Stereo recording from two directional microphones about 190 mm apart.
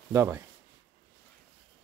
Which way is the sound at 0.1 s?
15° right (ahead or behind).